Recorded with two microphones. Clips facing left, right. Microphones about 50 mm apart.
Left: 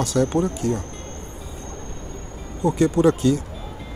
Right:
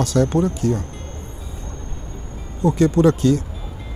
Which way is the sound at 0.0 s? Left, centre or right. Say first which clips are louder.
Right 2 dB; left.